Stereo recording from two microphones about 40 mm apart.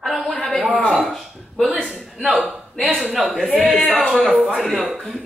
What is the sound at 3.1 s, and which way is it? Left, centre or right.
Speech, centre.